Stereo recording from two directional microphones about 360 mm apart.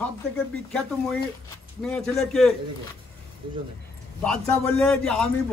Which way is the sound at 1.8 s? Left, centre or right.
Centre.